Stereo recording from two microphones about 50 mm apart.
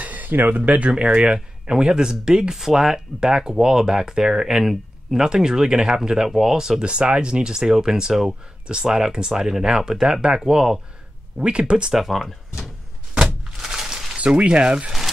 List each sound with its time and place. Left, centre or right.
0.0 s speech: right
11.9 s speech: centre
13.1 s a sound: centre
14.1 s speech: right